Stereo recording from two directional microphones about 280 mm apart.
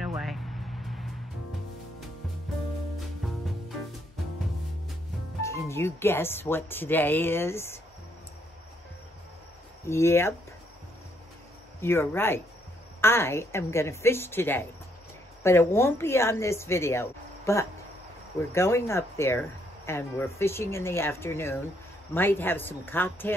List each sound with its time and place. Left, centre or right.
0.0 s music: centre
3.2 s music: centre
5.4 s speech: centre
9.8 s speech: centre
11.8 s speech: centre